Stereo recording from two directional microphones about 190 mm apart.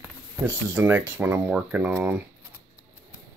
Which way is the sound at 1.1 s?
10° right (ahead or behind).